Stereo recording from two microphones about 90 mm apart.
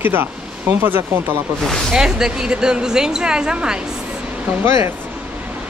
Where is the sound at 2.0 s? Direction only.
5° right (ahead or behind).